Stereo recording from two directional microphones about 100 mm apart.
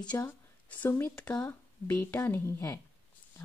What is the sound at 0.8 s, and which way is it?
Speech, 25° left (ahead or behind).